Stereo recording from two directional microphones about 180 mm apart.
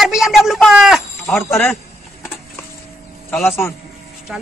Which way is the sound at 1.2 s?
15° left (ahead or behind).